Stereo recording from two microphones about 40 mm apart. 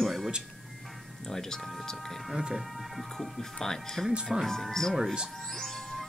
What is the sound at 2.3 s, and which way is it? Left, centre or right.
Speech, centre.